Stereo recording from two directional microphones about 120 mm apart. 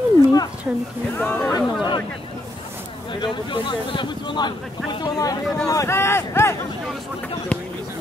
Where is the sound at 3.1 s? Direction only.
40° left (ahead or behind); by 6.5 s 20° left (ahead or behind).